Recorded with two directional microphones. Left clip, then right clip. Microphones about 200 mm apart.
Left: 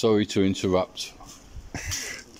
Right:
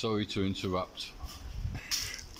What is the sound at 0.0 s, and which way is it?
Speech, 30° left (ahead or behind).